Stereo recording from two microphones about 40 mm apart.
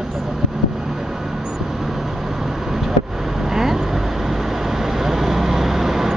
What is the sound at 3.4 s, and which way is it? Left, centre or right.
Vehicle, centre.